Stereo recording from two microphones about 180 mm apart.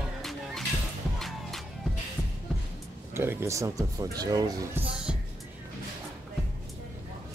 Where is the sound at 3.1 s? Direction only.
15° right (ahead or behind).